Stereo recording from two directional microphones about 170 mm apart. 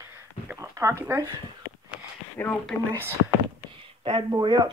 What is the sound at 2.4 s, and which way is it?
Speech, 10° left (ahead or behind).